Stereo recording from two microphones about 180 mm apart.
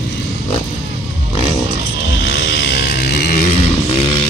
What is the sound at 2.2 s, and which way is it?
Vehicle, 75° left (ahead or behind).